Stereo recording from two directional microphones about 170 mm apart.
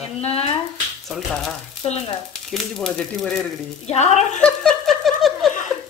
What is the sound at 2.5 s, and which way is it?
Speech, 5° left (ahead or behind).